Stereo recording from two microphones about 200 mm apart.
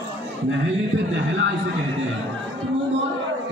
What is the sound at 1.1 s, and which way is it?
Speech, 65° right (ahead or behind).